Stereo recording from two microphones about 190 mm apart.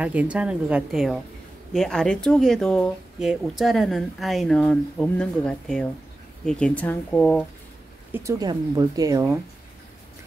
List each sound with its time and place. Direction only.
0.0 s speech: 5° right (ahead or behind)
8.1 s speech: 15° right (ahead or behind)